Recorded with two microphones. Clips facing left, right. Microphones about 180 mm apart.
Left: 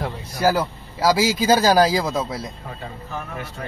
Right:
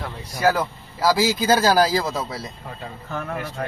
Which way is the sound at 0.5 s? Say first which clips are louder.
Even; 10° left (ahead or behind).